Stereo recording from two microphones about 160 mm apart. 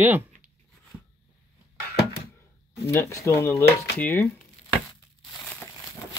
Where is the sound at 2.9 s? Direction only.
15° left (ahead or behind).